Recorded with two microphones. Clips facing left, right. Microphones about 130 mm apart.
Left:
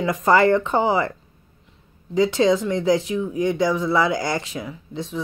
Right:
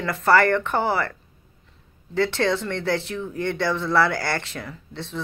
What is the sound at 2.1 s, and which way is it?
A man's voice, 15° left (ahead or behind).